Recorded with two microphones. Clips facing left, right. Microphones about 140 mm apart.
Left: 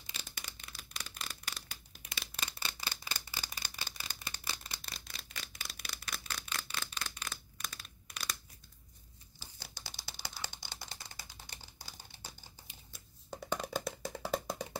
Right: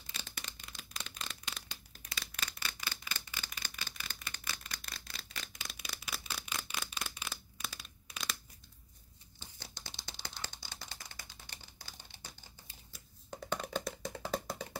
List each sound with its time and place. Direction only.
0.2 s shuffling cards: 10° left (ahead or behind)
2.1 s a sound: 30° left (ahead or behind)
5.4 s a sound: 5° left (ahead or behind)
9.4 s crumpling: 10° left (ahead or behind)
10.0 s typing: 5° left (ahead or behind)
10.7 s typewriter: 35° left (ahead or behind)
13.3 s music: 5° left (ahead or behind)